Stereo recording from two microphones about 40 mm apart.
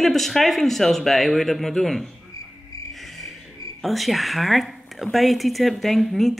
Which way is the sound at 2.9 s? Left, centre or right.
Centre.